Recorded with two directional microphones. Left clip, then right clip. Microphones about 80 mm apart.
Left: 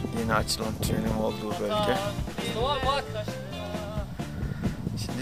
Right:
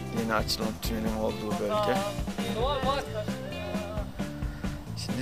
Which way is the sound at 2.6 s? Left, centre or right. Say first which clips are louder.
Left 2 dB; left.